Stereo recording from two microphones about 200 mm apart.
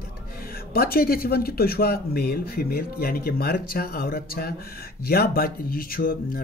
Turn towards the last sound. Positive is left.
turn(degrees=45)  # may be behind; listen again after turning